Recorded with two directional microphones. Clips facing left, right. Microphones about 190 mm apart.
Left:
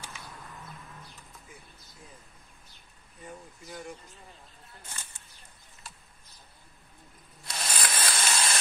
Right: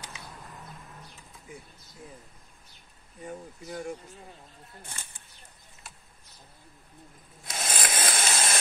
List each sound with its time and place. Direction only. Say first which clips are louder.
0.1 s a sound: right 1 dB; 10° right (ahead or behind)
3.3 s speech: right 5 dB; 45° right (ahead or behind)
7.4 s ratchet: right 2 dB; 50° right (ahead or behind)